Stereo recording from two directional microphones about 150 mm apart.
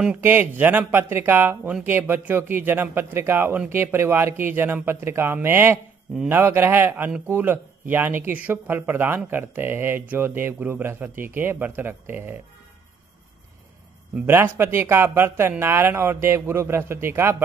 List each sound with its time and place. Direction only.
0.0 s a man's voice: 10° right (ahead or behind)
14.1 s a man's voice: 15° right (ahead or behind)